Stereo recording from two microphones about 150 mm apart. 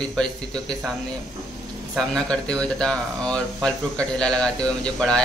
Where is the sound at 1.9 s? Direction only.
5° left (ahead or behind).